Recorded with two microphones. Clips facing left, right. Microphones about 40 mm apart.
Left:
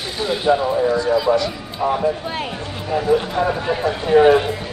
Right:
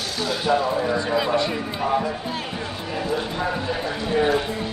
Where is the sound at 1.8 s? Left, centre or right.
Right.